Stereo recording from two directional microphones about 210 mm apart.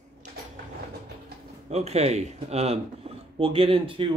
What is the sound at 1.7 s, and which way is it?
Speech, 30° right (ahead or behind).